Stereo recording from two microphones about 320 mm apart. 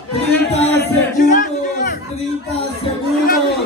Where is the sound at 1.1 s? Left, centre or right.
Left.